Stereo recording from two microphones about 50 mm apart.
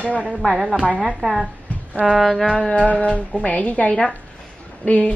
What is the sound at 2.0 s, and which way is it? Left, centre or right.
Speech, centre.